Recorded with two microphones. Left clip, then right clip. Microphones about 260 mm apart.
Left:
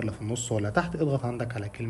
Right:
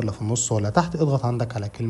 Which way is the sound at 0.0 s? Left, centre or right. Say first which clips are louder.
Right 6 dB; centre.